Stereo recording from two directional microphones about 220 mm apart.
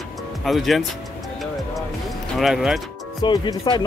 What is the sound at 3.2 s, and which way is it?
Speech, 20° left (ahead or behind).